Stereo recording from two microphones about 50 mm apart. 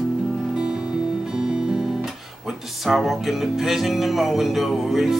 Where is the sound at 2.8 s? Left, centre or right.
Centre.